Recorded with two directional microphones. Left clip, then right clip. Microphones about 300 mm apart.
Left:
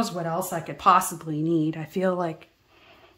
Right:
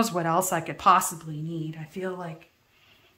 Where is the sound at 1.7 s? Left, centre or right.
Left.